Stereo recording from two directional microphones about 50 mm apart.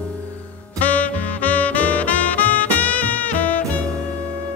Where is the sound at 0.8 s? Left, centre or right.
Left.